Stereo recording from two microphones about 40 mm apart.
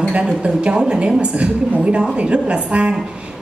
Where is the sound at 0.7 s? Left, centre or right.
Right.